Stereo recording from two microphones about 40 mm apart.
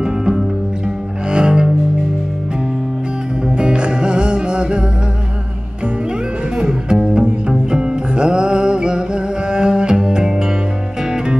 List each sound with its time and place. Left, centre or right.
0.0 s music: centre
1.3 s cello: right
3.4 s music: right
6.6 s music: right